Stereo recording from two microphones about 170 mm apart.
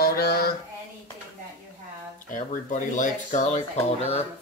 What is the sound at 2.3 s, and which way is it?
Speech, 50° left (ahead or behind).